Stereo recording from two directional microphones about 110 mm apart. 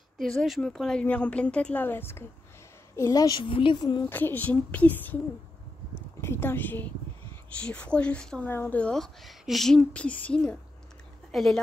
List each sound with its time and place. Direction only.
0.2 s speech: centre (ahead or behind); by 2.2 s 20° left (ahead or behind)
3.0 s a woman's voice: 35° left (ahead or behind)
3.4 s a woman's voice: 50° left (ahead or behind)
4.1 s speech: 15° left (ahead or behind)
6.2 s a woman's voice: 20° left (ahead or behind); by 11.6 s 5° left (ahead or behind)